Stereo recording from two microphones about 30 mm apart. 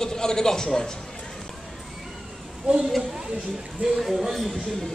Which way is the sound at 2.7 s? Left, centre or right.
Right.